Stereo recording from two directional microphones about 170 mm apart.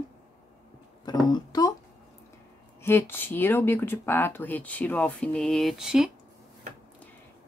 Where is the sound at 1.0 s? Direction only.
25° left (ahead or behind).